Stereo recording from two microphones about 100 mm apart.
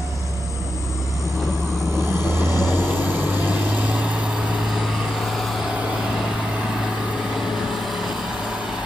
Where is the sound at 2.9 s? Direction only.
20° right (ahead or behind).